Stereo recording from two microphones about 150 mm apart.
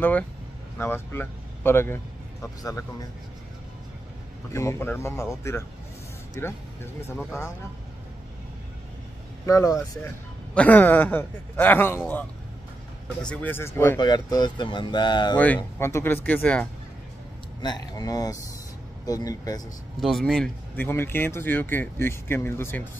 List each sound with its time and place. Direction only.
0.7 s speech: 15° left (ahead or behind)
4.5 s speech: 20° left (ahead or behind)
9.5 s speech: 20° left (ahead or behind)
10.5 s speech: 10° left (ahead or behind)
13.2 s speech: 10° left (ahead or behind)
13.9 s speech: 25° left (ahead or behind)
15.3 s speech: 10° left (ahead or behind)
17.6 s speech: 30° left (ahead or behind)
20.0 s speech: centre (ahead or behind)
20.7 s speech: 15° left (ahead or behind)